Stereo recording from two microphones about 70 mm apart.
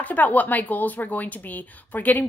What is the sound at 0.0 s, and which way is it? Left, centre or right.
Speech, left.